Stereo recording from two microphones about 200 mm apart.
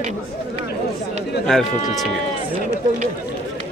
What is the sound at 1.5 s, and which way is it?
Speech, 5° left (ahead or behind).